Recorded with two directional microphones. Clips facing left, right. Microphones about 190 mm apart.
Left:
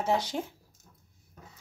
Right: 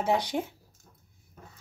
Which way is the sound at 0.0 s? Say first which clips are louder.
Right 2 dB; 15° right (ahead or behind).